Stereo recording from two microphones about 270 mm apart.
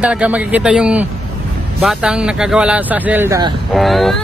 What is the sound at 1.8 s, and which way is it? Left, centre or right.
Speech, centre.